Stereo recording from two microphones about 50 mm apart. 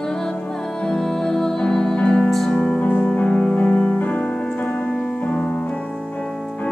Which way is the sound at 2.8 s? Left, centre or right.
Left.